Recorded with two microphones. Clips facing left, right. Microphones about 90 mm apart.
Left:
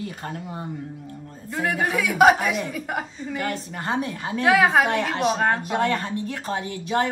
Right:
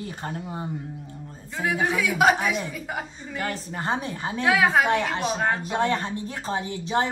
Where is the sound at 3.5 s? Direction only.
30° right (ahead or behind).